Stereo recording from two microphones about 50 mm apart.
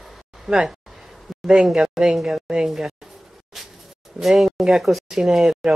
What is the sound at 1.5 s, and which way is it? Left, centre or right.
Speech, centre.